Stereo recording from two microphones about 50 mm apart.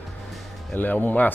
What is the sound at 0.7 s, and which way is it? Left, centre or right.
Speech, left.